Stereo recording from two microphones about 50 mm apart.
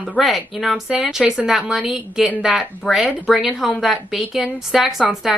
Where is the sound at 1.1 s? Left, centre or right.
Centre.